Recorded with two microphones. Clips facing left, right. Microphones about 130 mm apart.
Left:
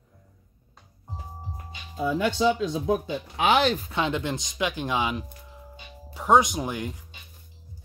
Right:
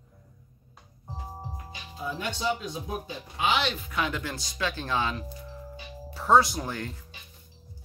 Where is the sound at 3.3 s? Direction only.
65° left (ahead or behind).